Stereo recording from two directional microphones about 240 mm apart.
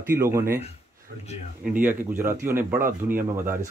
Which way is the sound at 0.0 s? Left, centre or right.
Centre.